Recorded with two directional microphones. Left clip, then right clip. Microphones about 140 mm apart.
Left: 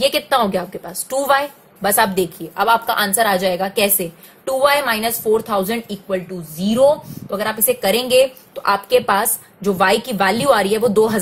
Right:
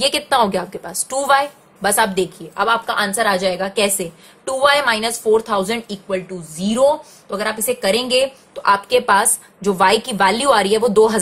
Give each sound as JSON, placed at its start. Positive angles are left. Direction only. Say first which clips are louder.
{"t": 0.0, "sound": "a woman's voice", "louder": "even", "side_deg": 0}
{"t": 2.5, "sound": "a woman's voice", "louder": "left 2 dB", "side_deg": 25}
{"t": 7.6, "sound": "a woman's voice", "louder": "left 1 dB", "side_deg": 20}